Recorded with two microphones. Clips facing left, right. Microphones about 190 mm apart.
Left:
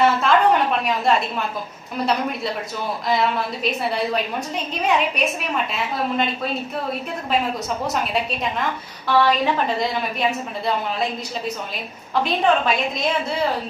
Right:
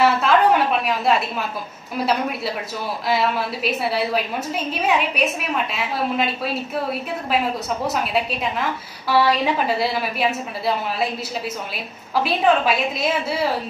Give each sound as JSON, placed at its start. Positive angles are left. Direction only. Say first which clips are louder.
{"t": 0.0, "sound": "a sound", "louder": "even", "side_deg": -5}
{"t": 2.0, "sound": "a woman's voice", "louder": "even", "side_deg": -5}
{"t": 7.8, "sound": "a woman's voice", "louder": "right 2 dB", "side_deg": 0}